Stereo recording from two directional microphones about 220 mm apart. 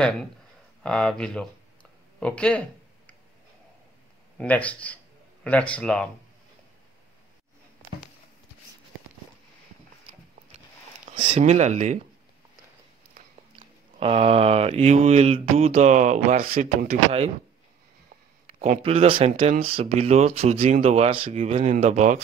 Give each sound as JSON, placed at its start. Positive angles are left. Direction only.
{"t": 0.0, "sound": "speech", "side_deg": 5}
{"t": 4.4, "sound": "speech", "side_deg": 5}
{"t": 11.3, "sound": "speech", "side_deg": -30}
{"t": 13.9, "sound": "speech", "side_deg": -25}
{"t": 18.6, "sound": "speech", "side_deg": -30}